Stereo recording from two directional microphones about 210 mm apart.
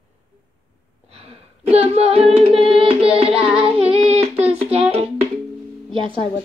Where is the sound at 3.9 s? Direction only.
30° right (ahead or behind).